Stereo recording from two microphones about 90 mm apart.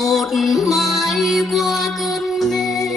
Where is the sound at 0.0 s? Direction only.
Centre (ahead or behind).